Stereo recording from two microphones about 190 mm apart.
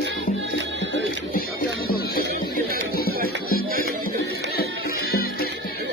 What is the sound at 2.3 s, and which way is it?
Music, 55° right (ahead or behind).